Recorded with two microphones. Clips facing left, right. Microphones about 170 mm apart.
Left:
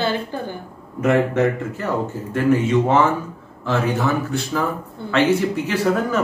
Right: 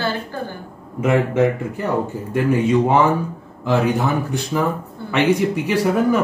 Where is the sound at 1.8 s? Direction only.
15° right (ahead or behind).